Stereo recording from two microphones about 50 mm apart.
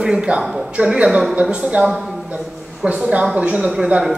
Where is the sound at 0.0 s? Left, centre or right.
Centre.